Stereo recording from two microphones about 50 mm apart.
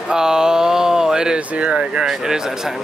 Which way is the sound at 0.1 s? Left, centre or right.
Centre.